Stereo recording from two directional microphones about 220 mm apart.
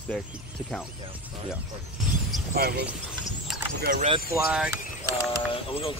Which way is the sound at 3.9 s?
30° right (ahead or behind).